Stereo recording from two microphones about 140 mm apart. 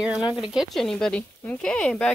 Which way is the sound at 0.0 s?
5° right (ahead or behind).